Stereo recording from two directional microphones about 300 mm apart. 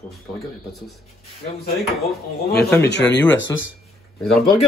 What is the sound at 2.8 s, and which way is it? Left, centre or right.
Speech, left.